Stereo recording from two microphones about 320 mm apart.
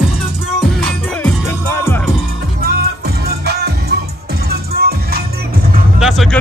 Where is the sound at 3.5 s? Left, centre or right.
Right.